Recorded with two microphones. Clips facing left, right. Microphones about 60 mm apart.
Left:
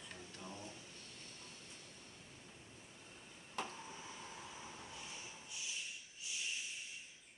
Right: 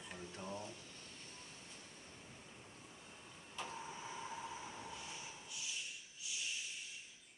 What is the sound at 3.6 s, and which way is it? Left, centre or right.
Vehicle, left.